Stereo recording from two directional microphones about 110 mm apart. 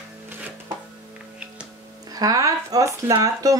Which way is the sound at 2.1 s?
35° right (ahead or behind).